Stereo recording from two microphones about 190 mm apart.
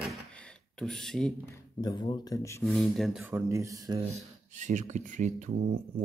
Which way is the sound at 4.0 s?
35° right (ahead or behind).